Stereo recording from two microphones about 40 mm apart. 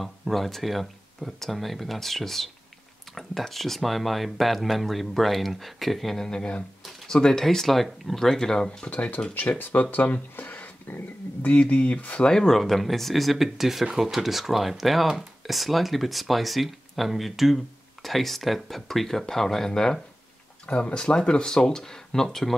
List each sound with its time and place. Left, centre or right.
0.0 s speech: centre
6.2 s speech: centre
7.4 s speech: centre
8.8 s speech: left
9.6 s speech: left
10.3 s a sound: left
11.6 s speech: left
12.2 s speech: centre
12.5 s speech: centre
20.6 s speech: left